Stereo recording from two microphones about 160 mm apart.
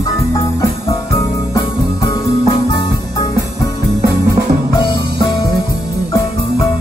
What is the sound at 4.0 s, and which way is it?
Music, 90° right.